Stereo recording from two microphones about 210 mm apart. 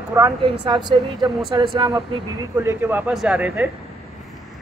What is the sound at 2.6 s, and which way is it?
Speech, 10° right (ahead or behind).